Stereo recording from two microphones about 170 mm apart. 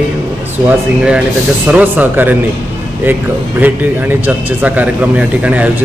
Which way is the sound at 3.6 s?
10° right (ahead or behind).